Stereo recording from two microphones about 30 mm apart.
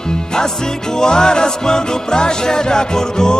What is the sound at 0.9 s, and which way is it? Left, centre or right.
Music, left.